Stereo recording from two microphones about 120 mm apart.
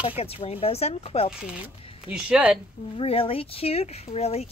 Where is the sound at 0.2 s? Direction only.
55° left (ahead or behind).